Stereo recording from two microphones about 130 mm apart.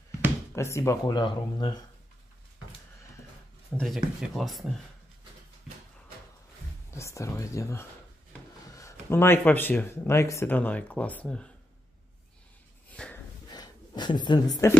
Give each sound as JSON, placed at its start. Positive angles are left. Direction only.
{"t": 0.6, "sound": "speech", "side_deg": 20}
{"t": 1.1, "sound": "speech", "side_deg": 35}
{"t": 3.7, "sound": "speech", "side_deg": 0}
{"t": 6.9, "sound": "speech", "side_deg": 20}
{"t": 12.9, "sound": "snort", "side_deg": 10}
{"t": 13.5, "sound": "a sound", "side_deg": 35}